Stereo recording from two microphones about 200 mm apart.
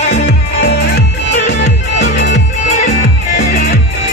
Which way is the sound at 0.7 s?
60° left (ahead or behind).